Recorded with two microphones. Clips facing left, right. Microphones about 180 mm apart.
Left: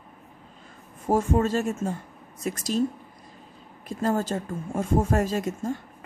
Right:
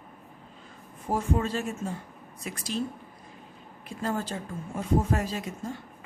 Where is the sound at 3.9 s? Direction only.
40° left (ahead or behind).